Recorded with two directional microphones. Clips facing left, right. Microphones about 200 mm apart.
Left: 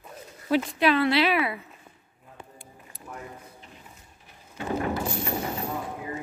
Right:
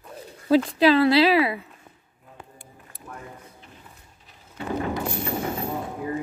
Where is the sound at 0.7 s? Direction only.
35° right (ahead or behind).